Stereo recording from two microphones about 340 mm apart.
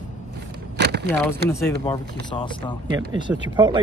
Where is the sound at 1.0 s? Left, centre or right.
Centre.